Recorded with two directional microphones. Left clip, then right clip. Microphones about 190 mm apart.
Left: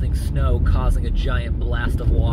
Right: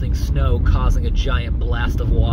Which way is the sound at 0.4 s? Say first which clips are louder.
Right 2 dB; 15° right (ahead or behind).